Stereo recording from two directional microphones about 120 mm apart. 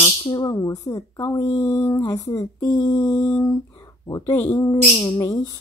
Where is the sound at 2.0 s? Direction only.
40° left (ahead or behind).